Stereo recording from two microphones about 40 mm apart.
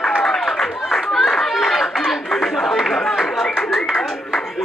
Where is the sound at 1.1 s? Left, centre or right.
Centre.